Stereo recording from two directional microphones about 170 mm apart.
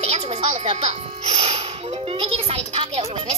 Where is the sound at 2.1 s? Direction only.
30° right (ahead or behind).